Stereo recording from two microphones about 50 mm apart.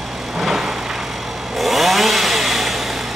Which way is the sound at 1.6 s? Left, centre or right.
Centre.